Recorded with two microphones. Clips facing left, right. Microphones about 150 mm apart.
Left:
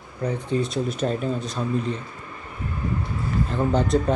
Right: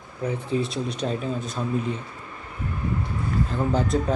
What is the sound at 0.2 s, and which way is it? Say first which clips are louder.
Speech: left 1 dB; 5° right (ahead or behind).